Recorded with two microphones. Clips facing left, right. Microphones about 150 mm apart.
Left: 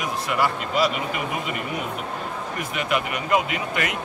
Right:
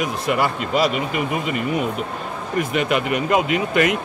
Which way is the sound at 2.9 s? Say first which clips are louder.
Right 2 dB; 90° right.